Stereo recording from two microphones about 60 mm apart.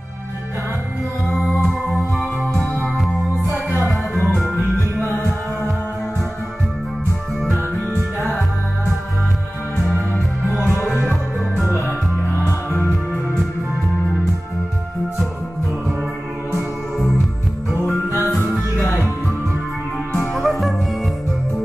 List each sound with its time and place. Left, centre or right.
1.3 s music: centre
4.2 s music: centre
7.9 s music: left
10.6 s music: left
11.5 s music: centre
18.8 s music: centre
20.3 s music: centre